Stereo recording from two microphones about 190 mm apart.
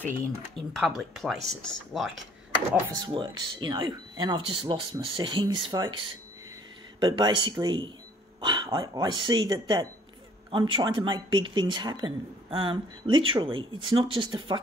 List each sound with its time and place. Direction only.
0.6 s speech: centre (ahead or behind)
2.7 s speech: 20° right (ahead or behind)
7.0 s speech: 25° right (ahead or behind)